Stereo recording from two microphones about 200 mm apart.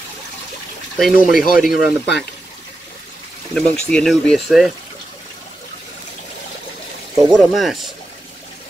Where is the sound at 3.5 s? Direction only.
5° left (ahead or behind).